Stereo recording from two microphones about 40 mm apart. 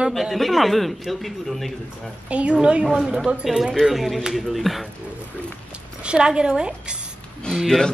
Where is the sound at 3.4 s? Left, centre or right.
Centre.